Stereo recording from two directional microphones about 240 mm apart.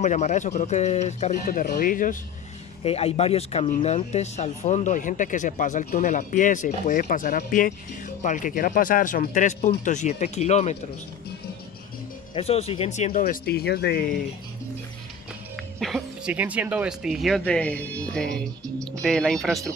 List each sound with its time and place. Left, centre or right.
0.0 s speech: left
12.4 s speech: left
15.8 s speech: centre